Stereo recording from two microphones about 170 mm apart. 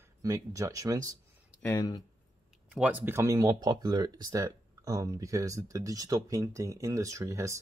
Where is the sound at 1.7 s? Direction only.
25° left (ahead or behind).